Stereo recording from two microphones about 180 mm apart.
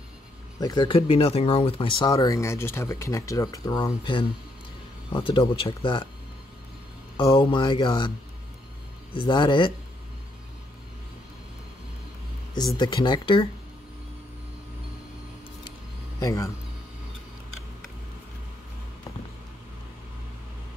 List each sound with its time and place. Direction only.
0.6 s speech: 25° left (ahead or behind)
7.2 s speech: 25° left (ahead or behind)
9.1 s speech: 30° left (ahead or behind)
12.7 s speech: 25° left (ahead or behind)
16.2 s speech: 20° left (ahead or behind)